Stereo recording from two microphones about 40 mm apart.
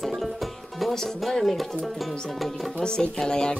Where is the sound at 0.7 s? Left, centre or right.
Centre.